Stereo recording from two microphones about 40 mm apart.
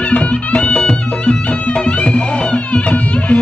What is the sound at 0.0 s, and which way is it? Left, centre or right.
Music, left.